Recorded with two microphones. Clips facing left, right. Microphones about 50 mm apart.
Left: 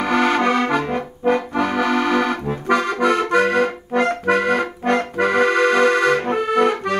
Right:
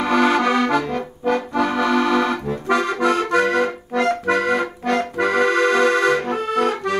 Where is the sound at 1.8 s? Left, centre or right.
Left.